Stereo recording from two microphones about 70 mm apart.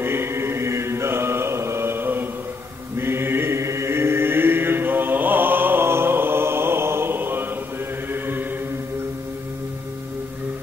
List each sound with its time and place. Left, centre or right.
0.0 s chant: right
3.0 s mantra: right
8.1 s chant: right